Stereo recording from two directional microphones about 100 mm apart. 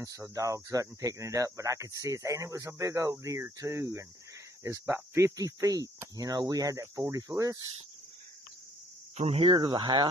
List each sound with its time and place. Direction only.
0.0 s speech: 35° right (ahead or behind)
9.2 s speech: 80° right
9.6 s speech: 50° right (ahead or behind)